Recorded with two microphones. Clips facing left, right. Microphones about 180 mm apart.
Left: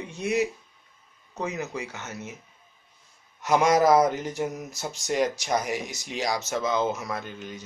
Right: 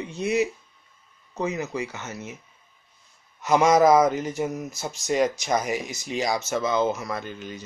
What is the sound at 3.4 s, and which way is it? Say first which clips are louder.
Speech: right 3 dB; 5° right (ahead or behind).